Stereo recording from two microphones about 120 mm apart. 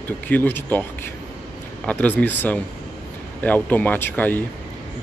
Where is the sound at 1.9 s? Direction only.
10° left (ahead or behind).